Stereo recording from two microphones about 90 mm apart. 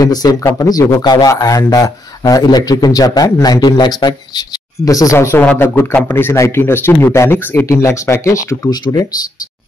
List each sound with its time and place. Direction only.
0.0 s a man's voice: 45° left (ahead or behind)
4.8 s speech: 40° left (ahead or behind)
5.4 s a man's voice: 20° left (ahead or behind)
8.6 s a man's voice: 50° left (ahead or behind)